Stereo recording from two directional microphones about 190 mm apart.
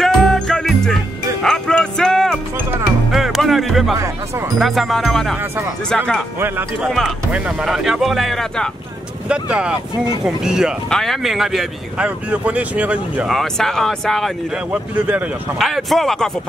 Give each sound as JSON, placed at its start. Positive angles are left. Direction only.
{"t": 0.0, "sound": "music", "side_deg": 0}
{"t": 4.6, "sound": "speech", "side_deg": 0}
{"t": 6.4, "sound": "speech", "side_deg": -10}
{"t": 6.9, "sound": "speech", "side_deg": 0}
{"t": 15.0, "sound": "speech", "side_deg": -10}